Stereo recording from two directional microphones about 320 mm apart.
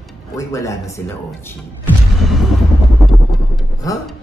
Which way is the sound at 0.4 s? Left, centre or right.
Centre.